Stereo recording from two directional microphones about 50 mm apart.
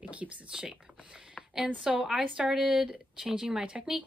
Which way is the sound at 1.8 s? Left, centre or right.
Centre.